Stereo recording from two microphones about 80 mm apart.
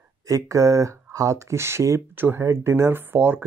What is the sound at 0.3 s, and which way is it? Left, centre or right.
Speech, right.